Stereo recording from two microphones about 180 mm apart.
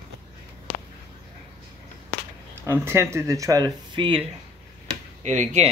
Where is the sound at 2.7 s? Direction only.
15° right (ahead or behind).